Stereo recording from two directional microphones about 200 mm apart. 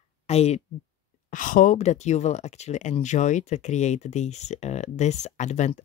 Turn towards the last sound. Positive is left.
turn(degrees=35)  # may be behind; listen again after turning